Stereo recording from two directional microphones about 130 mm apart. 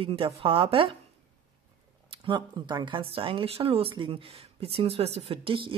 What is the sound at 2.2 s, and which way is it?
Speech, 35° right (ahead or behind).